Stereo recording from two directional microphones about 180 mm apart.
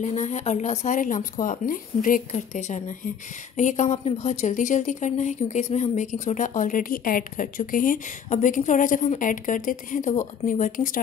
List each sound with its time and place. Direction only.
0.0 s a woman's voice: 40° left (ahead or behind)